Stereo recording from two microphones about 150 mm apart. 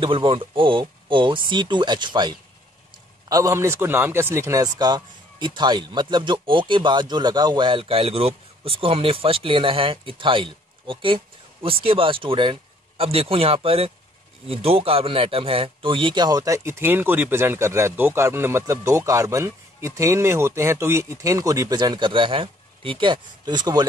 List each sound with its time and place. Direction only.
0.0 s a man's voice: 35° right (ahead or behind)